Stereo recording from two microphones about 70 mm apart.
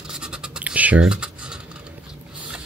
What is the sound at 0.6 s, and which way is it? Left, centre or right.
Computer keyboard, right.